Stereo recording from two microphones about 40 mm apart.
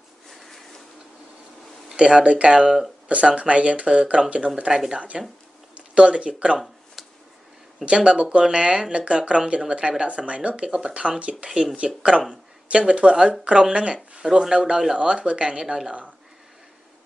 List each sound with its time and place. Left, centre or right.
0.3 s a sound: centre
2.0 s speech: right
4.6 s speech: centre
7.8 s speech: right